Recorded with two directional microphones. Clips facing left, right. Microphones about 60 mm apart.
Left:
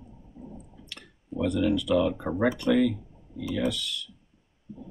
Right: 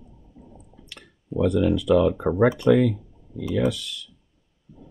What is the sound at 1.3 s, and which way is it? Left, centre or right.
Speech, centre.